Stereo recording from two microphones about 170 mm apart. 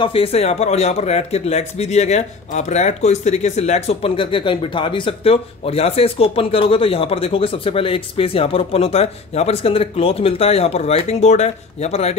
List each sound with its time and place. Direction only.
0.0 s speech: 35° left (ahead or behind)